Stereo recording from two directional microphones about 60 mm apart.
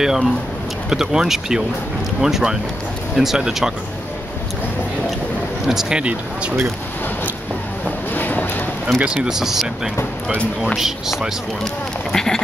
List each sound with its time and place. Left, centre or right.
0.0 s speech: centre
5.7 s speech: centre
5.9 s speech: centre
8.1 s a sound: left
9.0 s speech: centre
10.8 s speech: centre
12.1 s speech: centre